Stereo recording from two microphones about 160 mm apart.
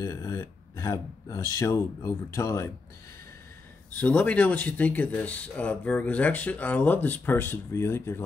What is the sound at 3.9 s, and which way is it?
Speech, 10° left (ahead or behind).